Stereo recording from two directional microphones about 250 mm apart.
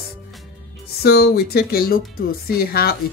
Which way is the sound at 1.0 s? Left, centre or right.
Left.